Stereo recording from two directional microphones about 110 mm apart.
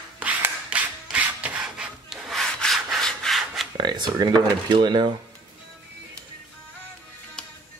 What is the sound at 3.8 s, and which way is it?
Speech, 40° right (ahead or behind).